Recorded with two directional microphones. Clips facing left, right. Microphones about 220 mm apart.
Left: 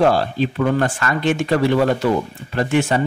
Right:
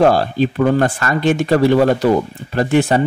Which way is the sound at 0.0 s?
40° right (ahead or behind).